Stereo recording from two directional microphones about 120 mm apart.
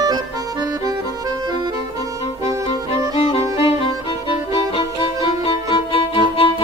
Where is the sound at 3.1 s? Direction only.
50° left (ahead or behind).